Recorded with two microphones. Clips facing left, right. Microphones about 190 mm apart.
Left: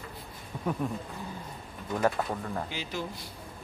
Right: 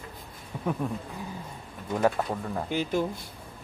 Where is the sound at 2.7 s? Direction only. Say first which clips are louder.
Right 9 dB; 50° right (ahead or behind).